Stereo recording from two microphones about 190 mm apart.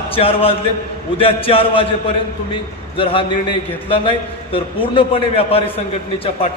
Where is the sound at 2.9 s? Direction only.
25° left (ahead or behind).